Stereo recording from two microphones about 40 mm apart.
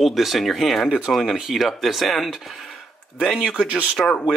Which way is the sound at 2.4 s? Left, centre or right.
Centre.